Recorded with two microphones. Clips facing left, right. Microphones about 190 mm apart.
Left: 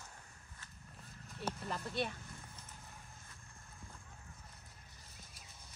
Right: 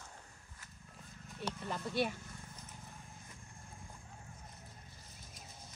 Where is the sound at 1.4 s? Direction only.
Centre (ahead or behind).